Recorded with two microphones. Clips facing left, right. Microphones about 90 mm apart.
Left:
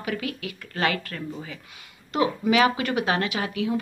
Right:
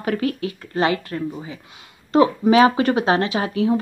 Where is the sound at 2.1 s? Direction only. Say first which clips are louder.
Right 7 dB; 35° right (ahead or behind).